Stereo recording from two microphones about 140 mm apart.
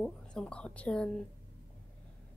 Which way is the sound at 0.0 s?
5° left (ahead or behind).